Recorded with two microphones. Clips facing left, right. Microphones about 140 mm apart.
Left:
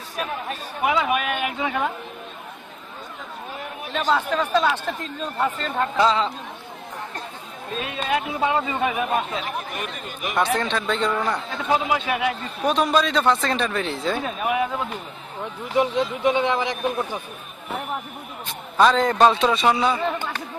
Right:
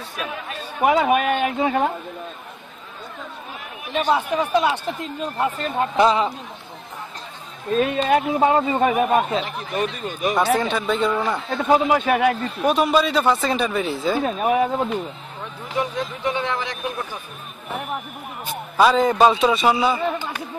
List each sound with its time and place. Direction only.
0.8 s a man's voice: 45° right (ahead or behind)
3.9 s a man's voice: 15° right (ahead or behind)
7.7 s speech: 45° right (ahead or behind)
9.3 s a man's voice: 35° right (ahead or behind)
10.3 s a man's voice: 5° right (ahead or behind)
11.5 s speech: 40° right (ahead or behind)
12.6 s a man's voice: 5° right (ahead or behind)
14.2 s a man's voice: 40° right (ahead or behind)
15.8 s speech: 20° left (ahead or behind)
18.4 s a man's voice: 5° right (ahead or behind)